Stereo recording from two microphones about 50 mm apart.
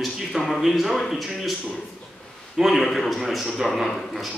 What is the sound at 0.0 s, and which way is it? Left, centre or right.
Speech, centre.